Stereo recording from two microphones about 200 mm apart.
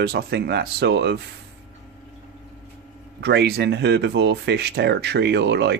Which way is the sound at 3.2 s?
55° right (ahead or behind).